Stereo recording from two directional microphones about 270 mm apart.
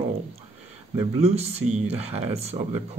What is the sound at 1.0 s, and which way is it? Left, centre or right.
Speech, right.